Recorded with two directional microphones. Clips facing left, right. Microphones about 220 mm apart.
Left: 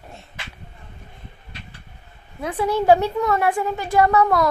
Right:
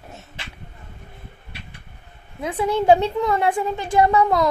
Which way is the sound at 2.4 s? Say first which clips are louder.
Even; 20° right (ahead or behind).